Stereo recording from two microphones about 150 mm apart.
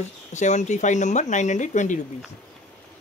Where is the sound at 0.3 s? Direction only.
50° left (ahead or behind).